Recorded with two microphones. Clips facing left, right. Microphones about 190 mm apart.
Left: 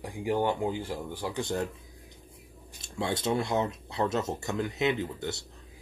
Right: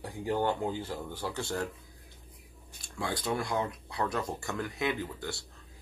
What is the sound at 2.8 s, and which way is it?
Speech, 25° left (ahead or behind).